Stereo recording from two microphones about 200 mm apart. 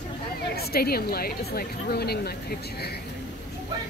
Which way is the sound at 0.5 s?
50° left (ahead or behind).